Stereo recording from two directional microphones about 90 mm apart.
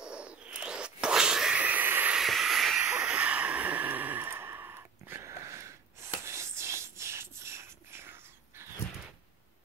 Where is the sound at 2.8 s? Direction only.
15° right (ahead or behind).